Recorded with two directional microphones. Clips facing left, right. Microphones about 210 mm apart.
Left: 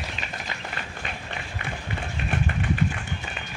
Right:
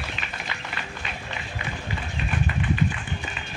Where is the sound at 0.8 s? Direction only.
50° left (ahead or behind).